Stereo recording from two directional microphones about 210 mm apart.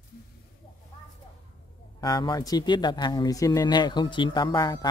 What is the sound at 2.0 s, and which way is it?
Speech, 20° left (ahead or behind).